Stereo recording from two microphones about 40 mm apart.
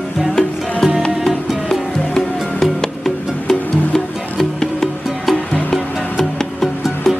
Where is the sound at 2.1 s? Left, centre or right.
Centre.